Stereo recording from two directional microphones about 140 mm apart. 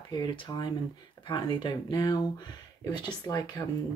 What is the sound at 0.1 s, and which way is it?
Speech, 30° left (ahead or behind).